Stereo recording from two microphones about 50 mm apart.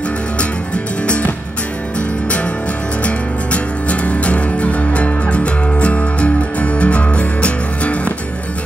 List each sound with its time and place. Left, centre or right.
1.0 s music: left
3.0 s music: left